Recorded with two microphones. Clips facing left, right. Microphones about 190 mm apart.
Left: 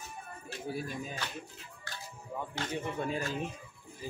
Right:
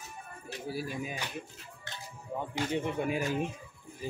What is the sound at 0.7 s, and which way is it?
Speech, 5° right (ahead or behind).